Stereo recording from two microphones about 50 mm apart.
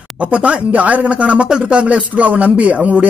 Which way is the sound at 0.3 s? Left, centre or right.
Right.